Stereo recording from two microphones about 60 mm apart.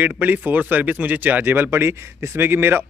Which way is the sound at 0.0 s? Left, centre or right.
Right.